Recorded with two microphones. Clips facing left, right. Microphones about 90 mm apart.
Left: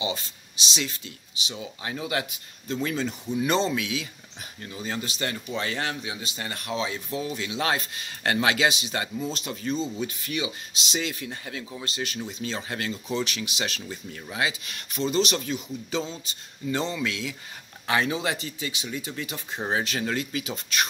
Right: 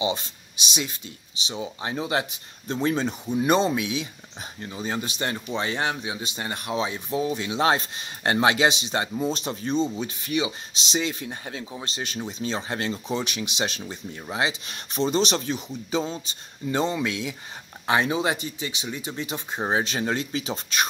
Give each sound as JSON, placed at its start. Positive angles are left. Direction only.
{"t": 0.0, "sound": "speech", "side_deg": -20}
{"t": 1.5, "sound": "speech", "side_deg": -30}